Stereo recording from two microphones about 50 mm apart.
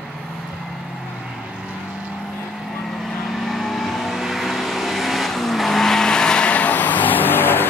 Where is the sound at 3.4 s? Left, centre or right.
Centre.